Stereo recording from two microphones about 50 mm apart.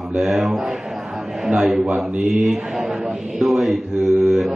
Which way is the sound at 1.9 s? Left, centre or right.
Right.